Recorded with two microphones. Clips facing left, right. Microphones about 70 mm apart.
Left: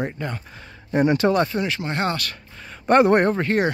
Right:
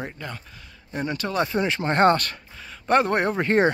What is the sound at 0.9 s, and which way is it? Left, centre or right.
Speech, left.